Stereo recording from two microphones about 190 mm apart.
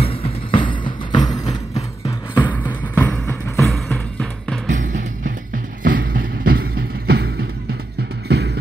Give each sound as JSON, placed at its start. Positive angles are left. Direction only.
{"t": 0.0, "sound": "music", "side_deg": 30}
{"t": 2.0, "sound": "music", "side_deg": 10}
{"t": 4.7, "sound": "music", "side_deg": -40}
{"t": 8.3, "sound": "music", "side_deg": -60}